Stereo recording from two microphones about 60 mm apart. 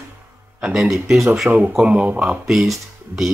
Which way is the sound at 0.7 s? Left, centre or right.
Centre.